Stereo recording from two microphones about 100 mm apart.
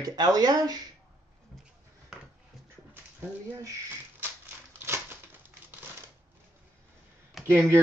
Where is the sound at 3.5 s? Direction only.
25° right (ahead or behind).